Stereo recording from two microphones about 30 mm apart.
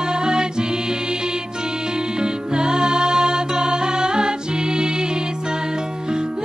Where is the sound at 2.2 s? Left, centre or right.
Right.